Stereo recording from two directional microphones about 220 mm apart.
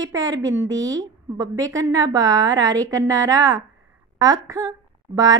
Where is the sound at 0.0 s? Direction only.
15° right (ahead or behind).